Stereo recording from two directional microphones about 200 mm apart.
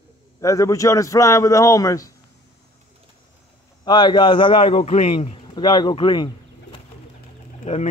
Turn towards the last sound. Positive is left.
turn(degrees=35)  # may be behind; listen again after turning